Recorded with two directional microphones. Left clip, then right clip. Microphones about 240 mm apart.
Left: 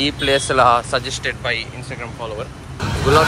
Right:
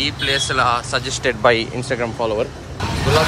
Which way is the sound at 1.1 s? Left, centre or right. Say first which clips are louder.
Right 6 dB; right.